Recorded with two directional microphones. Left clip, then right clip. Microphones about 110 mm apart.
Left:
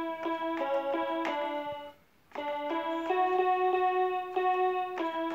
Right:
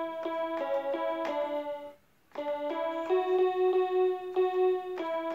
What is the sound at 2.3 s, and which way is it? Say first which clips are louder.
Keyboard: even; 35° left (ahead or behind).